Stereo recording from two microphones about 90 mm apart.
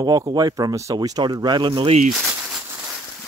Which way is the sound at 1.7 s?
90° right.